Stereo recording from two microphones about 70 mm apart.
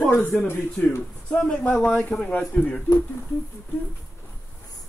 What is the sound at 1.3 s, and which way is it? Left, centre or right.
Speech, centre.